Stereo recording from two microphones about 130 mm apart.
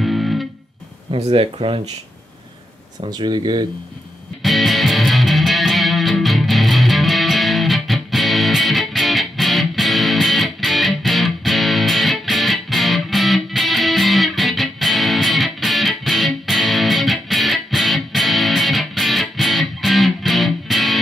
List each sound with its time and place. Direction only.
0.0 s music: centre (ahead or behind)
1.1 s speech: 45° right (ahead or behind)
3.1 s speech: 35° right (ahead or behind)
4.4 s music: centre (ahead or behind)